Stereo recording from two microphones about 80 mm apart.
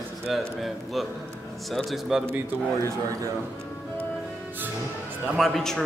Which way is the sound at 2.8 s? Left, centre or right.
Right.